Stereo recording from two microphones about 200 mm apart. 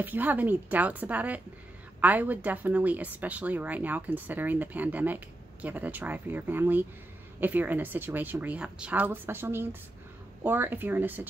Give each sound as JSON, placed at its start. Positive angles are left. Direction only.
{"t": 0.0, "sound": "speech", "side_deg": -10}